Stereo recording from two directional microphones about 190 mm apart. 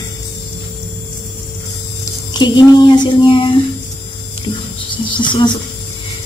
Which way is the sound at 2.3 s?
25° left (ahead or behind).